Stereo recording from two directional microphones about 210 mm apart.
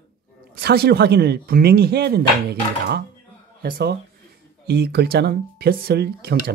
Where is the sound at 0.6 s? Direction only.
50° right (ahead or behind).